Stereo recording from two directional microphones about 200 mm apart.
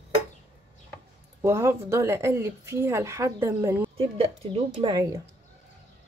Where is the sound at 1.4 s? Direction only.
15° right (ahead or behind).